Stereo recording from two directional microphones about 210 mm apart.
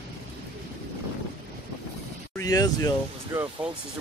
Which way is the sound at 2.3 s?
15° left (ahead or behind).